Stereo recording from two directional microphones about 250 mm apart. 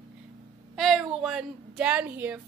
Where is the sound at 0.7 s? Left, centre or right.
Centre.